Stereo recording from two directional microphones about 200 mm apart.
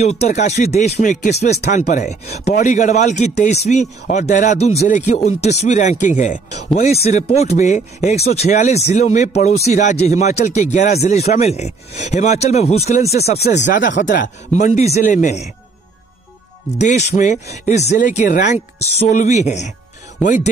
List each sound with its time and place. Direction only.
0.3 s speech: 35° left (ahead or behind)
13.8 s speech: 60° left (ahead or behind)
14.5 s speech: 35° left (ahead or behind)
16.8 s speech: 35° left (ahead or behind)